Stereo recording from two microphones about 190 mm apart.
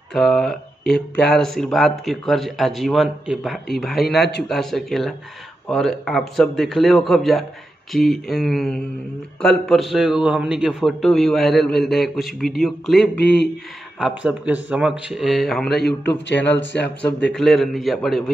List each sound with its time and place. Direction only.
0.1 s a man's voice: centre (ahead or behind)
13.2 s a man's voice: 60° left (ahead or behind)
13.9 s a man's voice: 5° right (ahead or behind)
15.7 s a man's voice: 60° left (ahead or behind)
17.3 s a man's voice: centre (ahead or behind)